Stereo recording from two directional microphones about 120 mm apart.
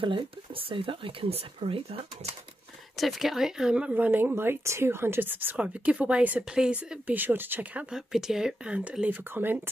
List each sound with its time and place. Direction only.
0.0 s speech: 45° right (ahead or behind)
3.0 s speech: centre (ahead or behind); by 7.8 s 15° right (ahead or behind)
7.9 s speech: 5° right (ahead or behind)